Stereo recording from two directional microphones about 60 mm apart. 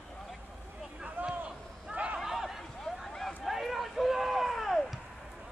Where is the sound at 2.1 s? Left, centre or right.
Centre.